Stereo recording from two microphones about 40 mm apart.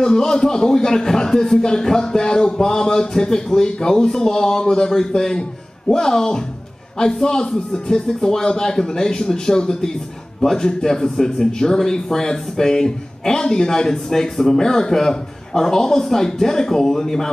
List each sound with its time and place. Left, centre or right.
0.0 s speech: centre